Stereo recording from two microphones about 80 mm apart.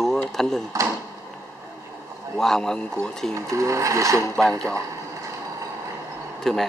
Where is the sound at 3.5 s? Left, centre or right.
Right.